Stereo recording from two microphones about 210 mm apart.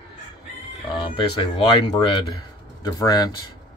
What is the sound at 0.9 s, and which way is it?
Speech, 25° left (ahead or behind).